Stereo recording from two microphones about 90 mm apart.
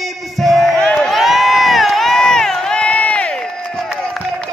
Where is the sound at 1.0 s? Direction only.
Centre (ahead or behind).